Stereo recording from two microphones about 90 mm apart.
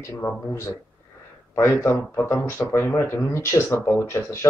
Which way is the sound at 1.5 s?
25° left (ahead or behind).